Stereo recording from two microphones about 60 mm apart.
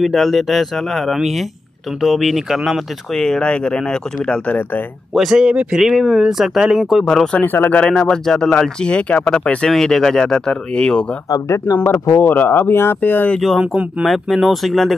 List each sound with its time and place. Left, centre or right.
0.0 s speech: centre
3.2 s speech: centre
5.1 s speech: centre
7.3 s speech: left
7.7 s speech: centre
9.7 s speech: centre
11.2 s speech: left
12.2 s speech: left
13.6 s speech: right
14.0 s speech: centre